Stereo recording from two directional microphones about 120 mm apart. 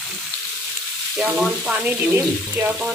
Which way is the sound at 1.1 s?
5° right (ahead or behind).